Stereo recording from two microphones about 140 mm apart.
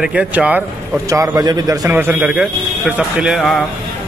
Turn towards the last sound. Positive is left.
turn(degrees=-5)  # may be behind; listen again after turning